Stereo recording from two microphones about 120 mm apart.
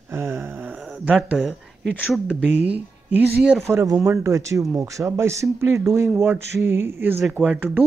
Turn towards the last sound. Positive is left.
turn(degrees=-10)  # may be behind; listen again after turning